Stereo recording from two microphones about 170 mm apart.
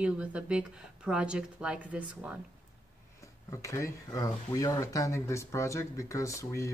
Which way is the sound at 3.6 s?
20° left (ahead or behind).